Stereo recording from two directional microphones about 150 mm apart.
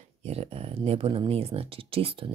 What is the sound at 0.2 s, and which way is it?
Speech, 45° right (ahead or behind).